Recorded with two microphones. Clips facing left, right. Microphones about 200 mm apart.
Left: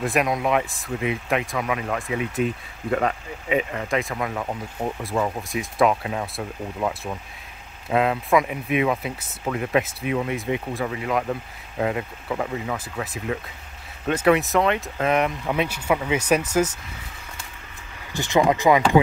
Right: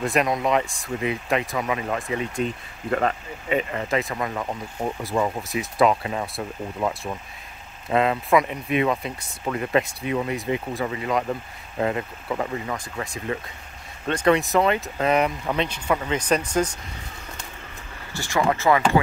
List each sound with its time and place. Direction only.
0.0 s speech: centre (ahead or behind)
18.1 s speech: 20° left (ahead or behind)